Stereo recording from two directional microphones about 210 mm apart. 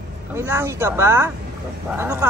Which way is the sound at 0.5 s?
10° right (ahead or behind).